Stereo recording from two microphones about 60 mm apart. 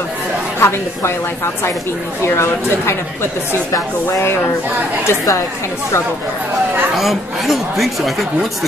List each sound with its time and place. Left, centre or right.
0.6 s speech: left
2.2 s speech: left
7.0 s speech: centre